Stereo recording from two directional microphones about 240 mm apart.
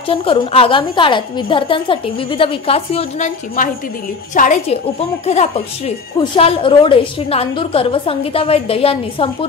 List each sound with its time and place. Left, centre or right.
0.1 s a woman's voice: left